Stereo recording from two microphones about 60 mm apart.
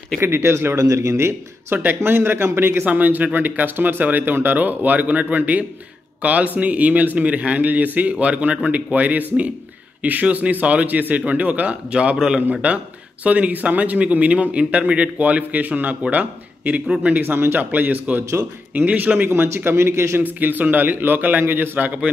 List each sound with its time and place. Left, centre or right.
0.2 s speech: right
0.7 s a man's voice: right
17.2 s a man's voice: right
20.3 s a man's voice: right